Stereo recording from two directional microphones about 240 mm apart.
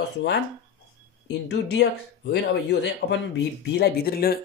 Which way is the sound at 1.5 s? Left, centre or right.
Left.